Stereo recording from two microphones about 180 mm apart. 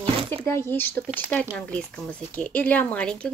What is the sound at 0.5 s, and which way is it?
Speech, 15° left (ahead or behind).